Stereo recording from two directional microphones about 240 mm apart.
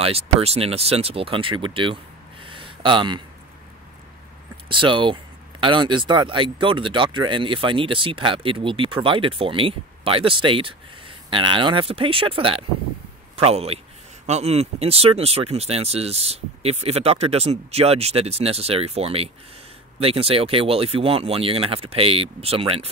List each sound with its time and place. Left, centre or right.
0.0 s speech: right
2.4 s a sound: right
4.6 s speech: right